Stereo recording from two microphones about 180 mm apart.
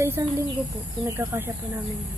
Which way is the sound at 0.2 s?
15° right (ahead or behind).